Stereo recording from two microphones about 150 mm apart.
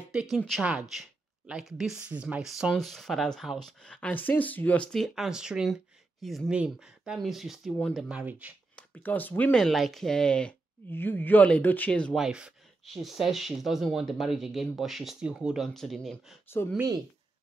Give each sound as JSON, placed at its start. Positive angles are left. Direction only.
{"t": 0.1, "sound": "speech", "side_deg": -5}
{"t": 8.7, "sound": "speech", "side_deg": 10}
{"t": 16.4, "sound": "speech", "side_deg": 15}